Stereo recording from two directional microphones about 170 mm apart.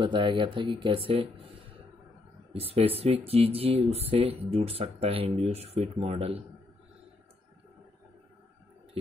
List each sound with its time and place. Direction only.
0.0 s speech: 30° right (ahead or behind)